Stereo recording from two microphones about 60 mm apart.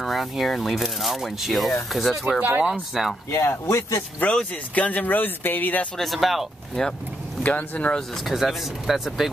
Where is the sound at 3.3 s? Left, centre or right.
Left.